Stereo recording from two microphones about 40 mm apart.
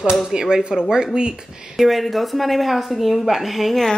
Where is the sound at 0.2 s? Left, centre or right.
Centre.